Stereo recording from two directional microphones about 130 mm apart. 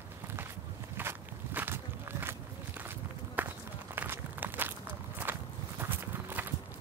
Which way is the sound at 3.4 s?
10° right (ahead or behind).